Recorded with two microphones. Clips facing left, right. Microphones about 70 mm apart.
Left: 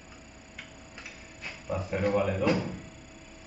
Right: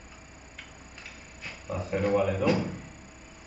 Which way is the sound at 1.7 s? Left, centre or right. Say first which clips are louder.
Right 1 dB; centre.